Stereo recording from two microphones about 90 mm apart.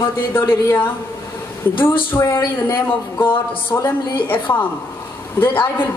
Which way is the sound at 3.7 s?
30° left (ahead or behind).